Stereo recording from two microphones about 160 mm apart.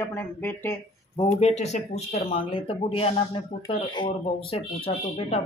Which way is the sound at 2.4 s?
35° left (ahead or behind).